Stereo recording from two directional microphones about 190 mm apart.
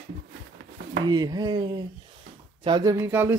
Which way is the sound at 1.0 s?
20° right (ahead or behind).